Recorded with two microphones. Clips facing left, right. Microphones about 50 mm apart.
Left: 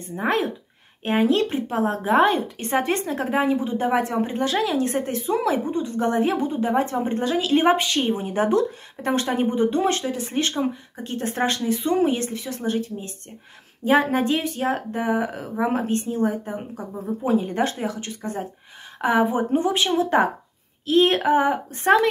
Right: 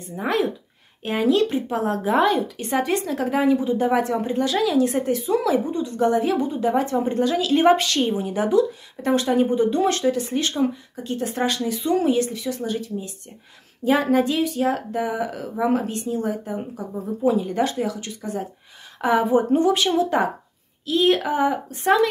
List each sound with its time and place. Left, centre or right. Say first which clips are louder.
0.0 s speech: even; left
8.1 s speech: even; left